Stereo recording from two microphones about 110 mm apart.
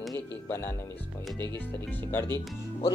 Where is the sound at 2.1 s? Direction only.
20° left (ahead or behind).